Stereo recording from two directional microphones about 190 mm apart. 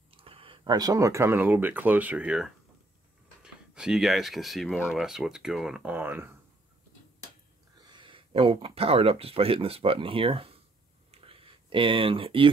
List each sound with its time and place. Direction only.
0.1 s speech: 30° right (ahead or behind); by 6.3 s 10° right (ahead or behind)
7.8 s speech: 25° right (ahead or behind)
11.1 s a sound: 30° right (ahead or behind)